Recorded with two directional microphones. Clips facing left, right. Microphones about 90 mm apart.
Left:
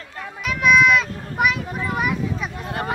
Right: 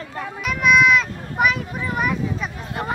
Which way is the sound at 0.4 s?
Centre (ahead or behind).